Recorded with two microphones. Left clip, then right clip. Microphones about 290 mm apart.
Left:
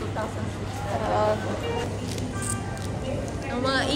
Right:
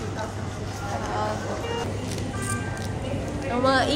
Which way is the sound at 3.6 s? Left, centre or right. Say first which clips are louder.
Right 4 dB; centre.